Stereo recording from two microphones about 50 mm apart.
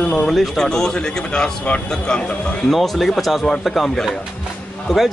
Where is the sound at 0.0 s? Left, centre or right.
Centre.